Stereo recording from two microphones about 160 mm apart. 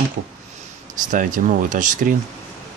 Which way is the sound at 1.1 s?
55° right (ahead or behind).